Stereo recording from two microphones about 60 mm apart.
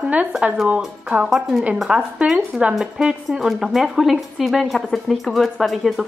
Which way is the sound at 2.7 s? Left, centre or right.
Centre.